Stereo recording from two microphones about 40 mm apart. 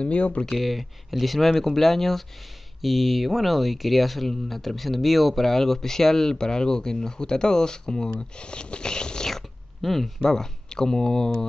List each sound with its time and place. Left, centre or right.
0.0 s speech: left
0.5 s speech: centre
9.3 s a sound: centre
10.2 s speech: centre